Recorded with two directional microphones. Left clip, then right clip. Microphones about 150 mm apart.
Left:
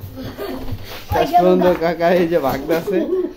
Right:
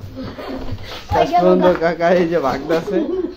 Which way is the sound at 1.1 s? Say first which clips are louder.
Even; 20° left (ahead or behind).